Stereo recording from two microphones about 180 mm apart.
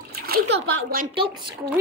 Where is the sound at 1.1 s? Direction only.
25° right (ahead or behind).